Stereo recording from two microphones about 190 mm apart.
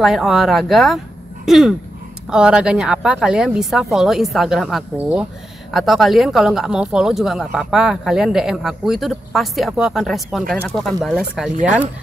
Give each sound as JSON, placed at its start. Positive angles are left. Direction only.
{"t": 0.0, "sound": "speech", "side_deg": 0}
{"t": 11.5, "sound": "speech", "side_deg": -40}